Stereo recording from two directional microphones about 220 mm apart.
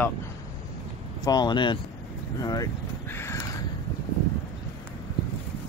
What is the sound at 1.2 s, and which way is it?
Speech, 20° left (ahead or behind).